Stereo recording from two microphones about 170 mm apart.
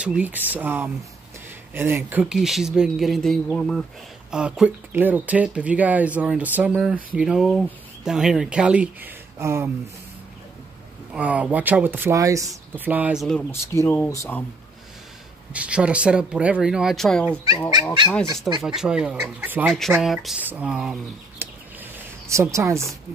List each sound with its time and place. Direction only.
0.0 s speech: 10° right (ahead or behind)
11.1 s speech: 5° right (ahead or behind)
13.5 s speech: 15° left (ahead or behind)
15.5 s speech: 5° right (ahead or behind)
18.5 s speech: centre (ahead or behind)
22.3 s speech: 15° right (ahead or behind)